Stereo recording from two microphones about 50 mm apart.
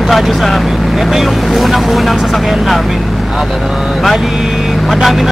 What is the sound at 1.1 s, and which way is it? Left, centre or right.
Speech, centre.